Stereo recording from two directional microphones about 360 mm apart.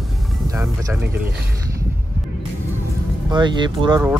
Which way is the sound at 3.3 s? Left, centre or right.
Centre.